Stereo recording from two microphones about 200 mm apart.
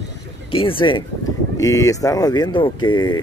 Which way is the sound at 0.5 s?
25° left (ahead or behind).